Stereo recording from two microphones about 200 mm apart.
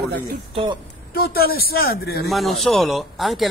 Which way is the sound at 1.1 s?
50° left (ahead or behind).